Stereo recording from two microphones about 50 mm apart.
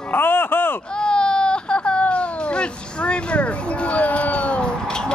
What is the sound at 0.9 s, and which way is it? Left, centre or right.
Baby cry, centre.